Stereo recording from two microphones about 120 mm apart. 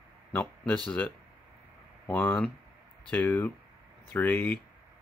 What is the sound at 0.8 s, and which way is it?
Speech, 10° left (ahead or behind).